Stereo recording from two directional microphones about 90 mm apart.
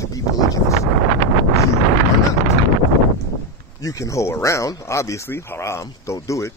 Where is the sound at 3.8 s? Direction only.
35° left (ahead or behind).